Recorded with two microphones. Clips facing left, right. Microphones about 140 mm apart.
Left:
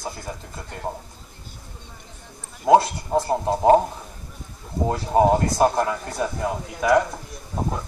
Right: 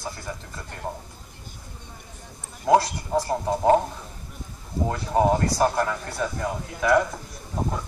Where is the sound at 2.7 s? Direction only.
20° left (ahead or behind).